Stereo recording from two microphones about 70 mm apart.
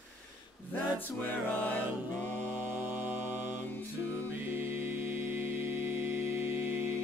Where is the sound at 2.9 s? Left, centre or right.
Right.